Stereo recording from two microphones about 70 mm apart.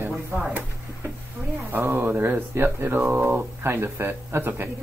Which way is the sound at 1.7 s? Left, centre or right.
Right.